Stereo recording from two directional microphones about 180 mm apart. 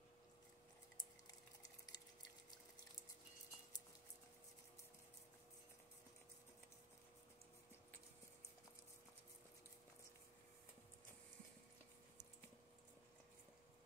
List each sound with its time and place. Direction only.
1.9 s water: 20° left (ahead or behind)